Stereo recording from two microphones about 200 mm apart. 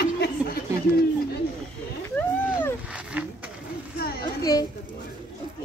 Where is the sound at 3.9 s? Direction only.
50° left (ahead or behind).